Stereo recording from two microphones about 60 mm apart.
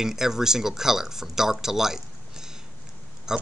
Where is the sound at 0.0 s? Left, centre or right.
Centre.